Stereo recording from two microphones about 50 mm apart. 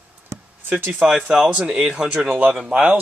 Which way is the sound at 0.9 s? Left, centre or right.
Centre.